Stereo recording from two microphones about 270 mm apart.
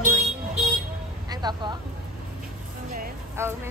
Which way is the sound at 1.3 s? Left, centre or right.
Centre.